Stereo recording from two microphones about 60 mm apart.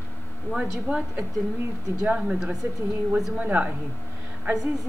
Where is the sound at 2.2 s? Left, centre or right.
Centre.